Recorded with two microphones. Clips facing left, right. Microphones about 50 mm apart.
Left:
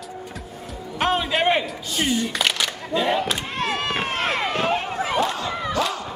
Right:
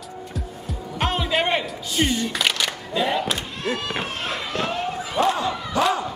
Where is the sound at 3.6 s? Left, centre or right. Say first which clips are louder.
Left 4 dB; left.